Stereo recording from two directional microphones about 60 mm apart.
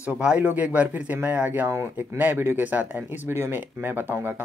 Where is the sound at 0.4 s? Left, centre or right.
Right.